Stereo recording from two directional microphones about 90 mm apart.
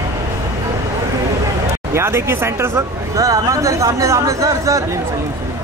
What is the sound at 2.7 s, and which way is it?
Speech, 40° right (ahead or behind).